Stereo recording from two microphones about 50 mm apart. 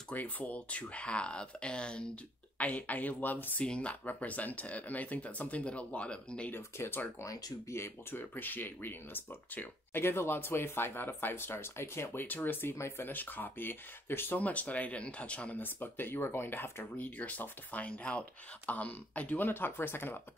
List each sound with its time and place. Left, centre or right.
0.1 s speech: left
2.6 s speech: left
3.6 s speech: left
6.5 s speech: left
8.2 s speech: left
12.3 s speech: left
12.7 s speech: left
13.0 s speech: left
14.4 s speech: left
15.6 s speech: left
16.8 s speech: left